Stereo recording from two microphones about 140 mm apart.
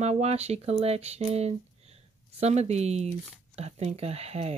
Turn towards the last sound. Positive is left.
turn(degrees=-50)  # may be behind; listen again after turning